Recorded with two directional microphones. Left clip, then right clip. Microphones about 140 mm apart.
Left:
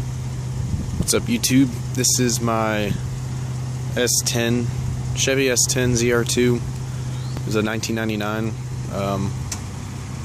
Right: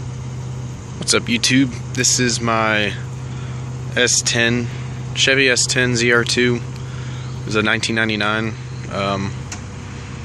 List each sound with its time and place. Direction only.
1.0 s speech: 15° left (ahead or behind)